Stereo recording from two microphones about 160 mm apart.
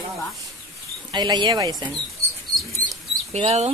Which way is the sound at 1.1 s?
25° right (ahead or behind).